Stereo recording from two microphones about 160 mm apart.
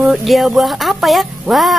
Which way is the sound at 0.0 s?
Centre (ahead or behind).